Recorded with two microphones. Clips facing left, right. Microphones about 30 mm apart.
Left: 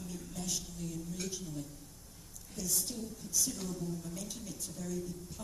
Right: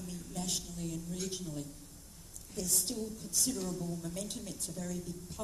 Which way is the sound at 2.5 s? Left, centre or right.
Right.